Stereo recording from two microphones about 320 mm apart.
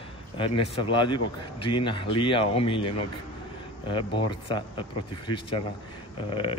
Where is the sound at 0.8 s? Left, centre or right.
Centre.